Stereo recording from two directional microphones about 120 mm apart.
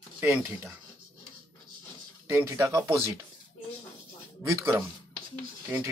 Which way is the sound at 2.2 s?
25° right (ahead or behind).